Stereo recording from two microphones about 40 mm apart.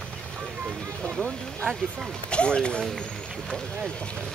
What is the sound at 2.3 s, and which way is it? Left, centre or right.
Speech, left.